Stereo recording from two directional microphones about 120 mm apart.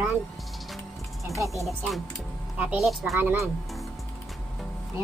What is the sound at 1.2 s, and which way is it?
Speech, 25° right (ahead or behind).